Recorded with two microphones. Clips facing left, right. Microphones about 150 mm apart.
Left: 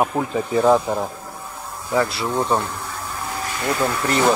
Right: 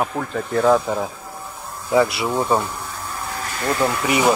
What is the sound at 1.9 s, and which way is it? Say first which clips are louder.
Speech: right 3 dB; 10° right (ahead or behind).